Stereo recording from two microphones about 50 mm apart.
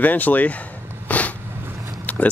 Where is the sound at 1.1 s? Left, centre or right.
Left.